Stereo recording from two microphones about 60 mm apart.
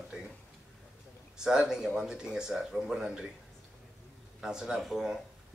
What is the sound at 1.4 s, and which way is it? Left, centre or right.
A man's voice, centre.